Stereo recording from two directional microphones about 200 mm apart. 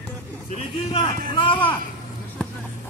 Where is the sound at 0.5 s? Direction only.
25° left (ahead or behind).